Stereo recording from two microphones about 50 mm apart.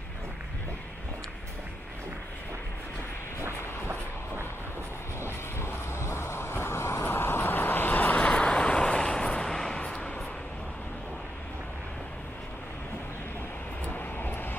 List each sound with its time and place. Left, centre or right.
5.6 s vehicle: left
13.8 s vehicle: left